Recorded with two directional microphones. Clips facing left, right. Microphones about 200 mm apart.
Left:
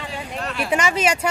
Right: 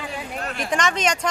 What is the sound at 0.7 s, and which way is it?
Speech, 10° left (ahead or behind).